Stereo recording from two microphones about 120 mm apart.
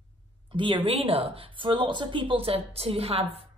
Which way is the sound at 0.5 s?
45° right (ahead or behind).